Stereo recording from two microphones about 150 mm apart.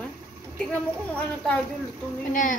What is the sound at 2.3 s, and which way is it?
Speech, 60° left (ahead or behind).